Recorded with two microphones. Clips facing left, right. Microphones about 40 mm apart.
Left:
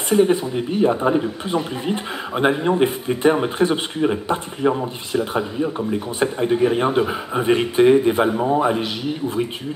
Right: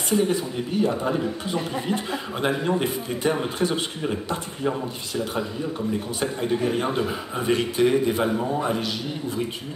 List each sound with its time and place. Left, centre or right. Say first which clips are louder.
0.1 s speech: left 6 dB; left